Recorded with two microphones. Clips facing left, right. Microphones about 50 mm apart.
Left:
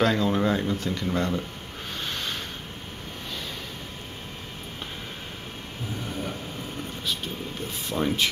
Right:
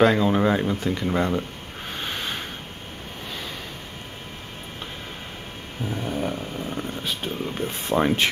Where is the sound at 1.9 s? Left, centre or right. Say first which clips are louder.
Right 2 dB; centre.